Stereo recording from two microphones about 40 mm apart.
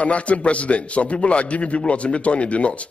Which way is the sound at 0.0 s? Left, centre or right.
Left.